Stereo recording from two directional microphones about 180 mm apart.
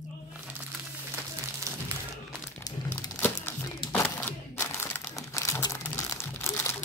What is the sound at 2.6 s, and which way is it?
Crumpling, 15° left (ahead or behind).